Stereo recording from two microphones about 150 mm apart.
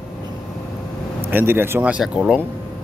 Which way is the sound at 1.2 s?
15° right (ahead or behind).